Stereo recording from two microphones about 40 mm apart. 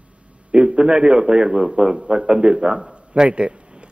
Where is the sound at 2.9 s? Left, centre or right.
Right.